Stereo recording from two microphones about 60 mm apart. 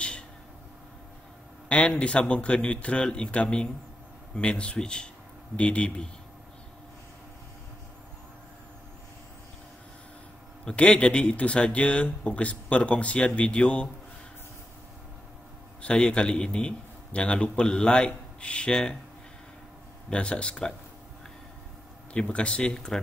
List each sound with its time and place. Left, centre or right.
2.0 s a man's voice: centre
10.6 s speech: centre
15.8 s a man's voice: centre
20.1 s a man's voice: centre
22.1 s a man's voice: centre